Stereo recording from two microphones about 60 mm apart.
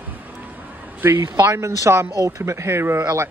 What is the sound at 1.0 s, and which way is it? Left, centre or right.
Speech, right.